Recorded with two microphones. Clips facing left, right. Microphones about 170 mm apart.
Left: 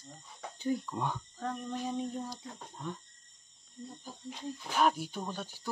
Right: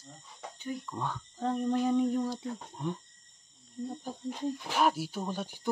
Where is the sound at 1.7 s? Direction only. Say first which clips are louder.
Right 11 dB; 65° right (ahead or behind).